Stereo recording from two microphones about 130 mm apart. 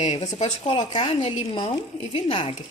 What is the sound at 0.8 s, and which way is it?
A woman's voice, 35° left (ahead or behind).